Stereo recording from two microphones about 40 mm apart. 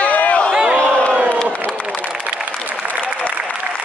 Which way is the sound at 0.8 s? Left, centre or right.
Left.